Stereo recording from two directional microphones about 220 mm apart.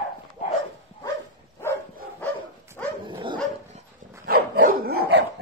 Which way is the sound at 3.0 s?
20° right (ahead or behind).